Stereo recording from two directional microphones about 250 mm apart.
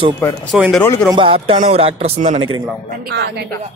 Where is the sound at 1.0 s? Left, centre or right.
Centre.